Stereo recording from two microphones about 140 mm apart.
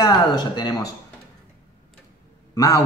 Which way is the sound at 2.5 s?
25° left (ahead or behind).